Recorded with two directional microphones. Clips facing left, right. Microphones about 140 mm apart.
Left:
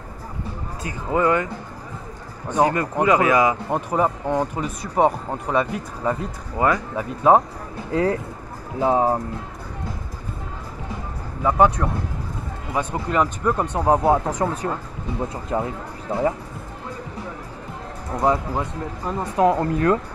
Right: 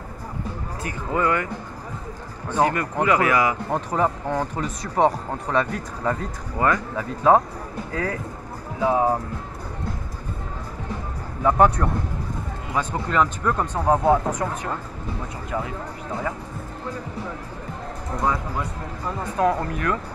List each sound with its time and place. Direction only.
0.8 s speech: 20° left (ahead or behind)
2.5 s speech: 20° left (ahead or behind)
7.9 s speech: 25° left (ahead or behind)
11.4 s speech: 5° left (ahead or behind)
14.4 s speech: 30° left (ahead or behind)
18.2 s speech: 25° left (ahead or behind)